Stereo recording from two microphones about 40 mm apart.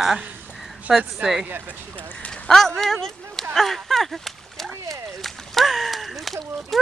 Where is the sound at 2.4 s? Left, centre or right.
Centre.